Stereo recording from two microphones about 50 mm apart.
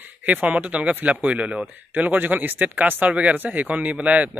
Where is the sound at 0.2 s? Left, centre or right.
Right.